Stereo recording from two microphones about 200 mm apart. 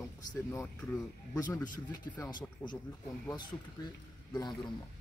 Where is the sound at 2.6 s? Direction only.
10° left (ahead or behind).